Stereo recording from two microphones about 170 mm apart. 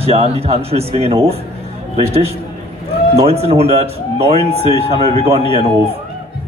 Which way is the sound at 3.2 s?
40° right (ahead or behind).